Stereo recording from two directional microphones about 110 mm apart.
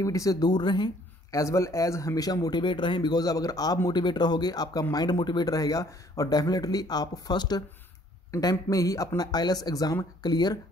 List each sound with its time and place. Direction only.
0.0 s speech: 30° left (ahead or behind)
1.3 s speech: 30° left (ahead or behind)